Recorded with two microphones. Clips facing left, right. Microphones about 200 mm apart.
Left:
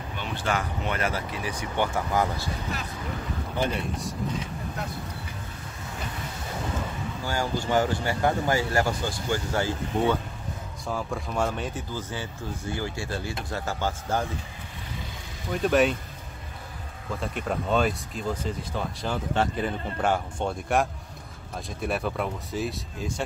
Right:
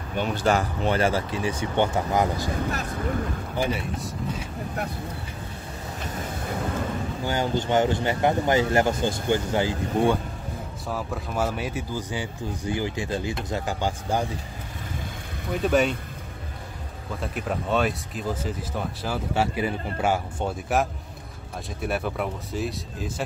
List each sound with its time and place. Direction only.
0.1 s speech: 45° right (ahead or behind); by 2.5 s 20° right (ahead or behind)
2.5 s speech: 50° right (ahead or behind)
3.5 s speech: 5° right (ahead or behind)
7.2 s speech: 20° right (ahead or behind)
10.9 s speech: 5° right (ahead or behind)
15.5 s speech: centre (ahead or behind)
17.1 s speech: centre (ahead or behind)